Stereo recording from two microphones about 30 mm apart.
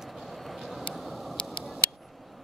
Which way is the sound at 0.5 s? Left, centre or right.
Centre.